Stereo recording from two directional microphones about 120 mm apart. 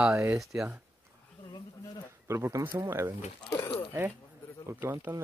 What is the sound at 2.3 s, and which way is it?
Speech, 20° right (ahead or behind).